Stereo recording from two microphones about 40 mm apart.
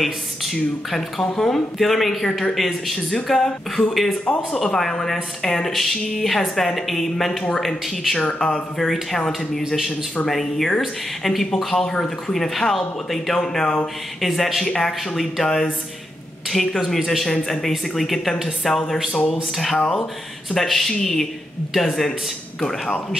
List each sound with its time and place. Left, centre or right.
0.0 s a woman's voice: centre
4.5 s a woman's voice: centre
8.2 s speech: left
9.7 s a woman's voice: centre
14.2 s a woman's voice: centre